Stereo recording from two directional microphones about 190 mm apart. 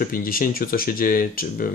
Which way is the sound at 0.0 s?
50° left (ahead or behind).